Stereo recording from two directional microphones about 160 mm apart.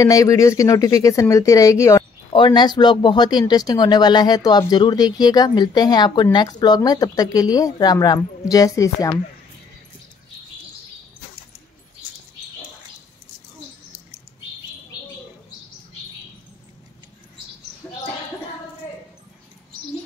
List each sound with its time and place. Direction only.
0.0 s speech: 20° left (ahead or behind)
2.3 s speech: 30° left (ahead or behind)